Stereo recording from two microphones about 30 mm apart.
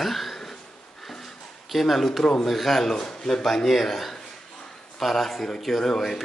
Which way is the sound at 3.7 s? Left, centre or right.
Centre.